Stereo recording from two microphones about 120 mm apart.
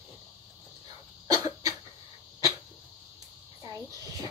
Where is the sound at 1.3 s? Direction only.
30° right (ahead or behind).